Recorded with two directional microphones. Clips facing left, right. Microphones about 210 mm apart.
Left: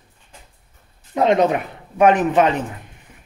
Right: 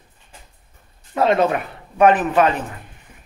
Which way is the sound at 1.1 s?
20° left (ahead or behind).